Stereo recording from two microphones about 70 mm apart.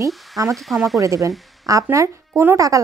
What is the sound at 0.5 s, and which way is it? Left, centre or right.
Speech, centre.